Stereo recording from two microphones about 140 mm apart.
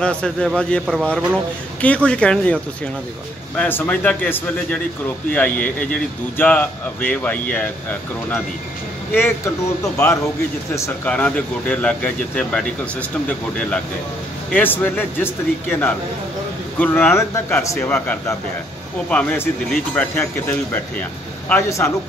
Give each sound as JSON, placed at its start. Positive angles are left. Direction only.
{"t": 0.0, "sound": "a man's voice", "side_deg": 5}
{"t": 11.1, "sound": "a man's voice", "side_deg": 10}
{"t": 14.5, "sound": "a man's voice", "side_deg": 15}